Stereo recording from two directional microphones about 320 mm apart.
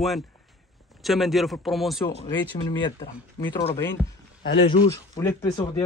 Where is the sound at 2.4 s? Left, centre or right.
Centre.